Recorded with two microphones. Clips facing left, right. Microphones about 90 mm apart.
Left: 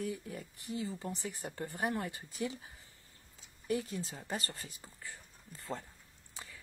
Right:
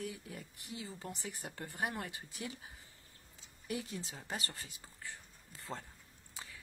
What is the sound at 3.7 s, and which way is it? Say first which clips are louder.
Speech: left 5 dB; 5° right (ahead or behind).